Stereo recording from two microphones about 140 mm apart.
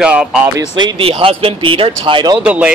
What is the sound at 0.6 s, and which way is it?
Speech, 30° right (ahead or behind).